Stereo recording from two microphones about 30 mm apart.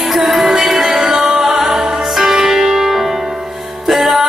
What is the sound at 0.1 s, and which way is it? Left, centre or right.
Music, centre.